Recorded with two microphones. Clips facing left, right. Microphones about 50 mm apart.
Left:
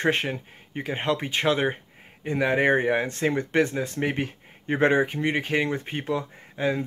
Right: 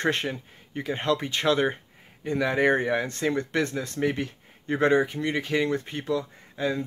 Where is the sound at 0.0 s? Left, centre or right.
Centre.